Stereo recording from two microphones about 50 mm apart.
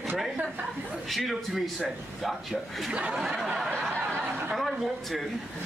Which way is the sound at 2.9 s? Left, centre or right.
Right.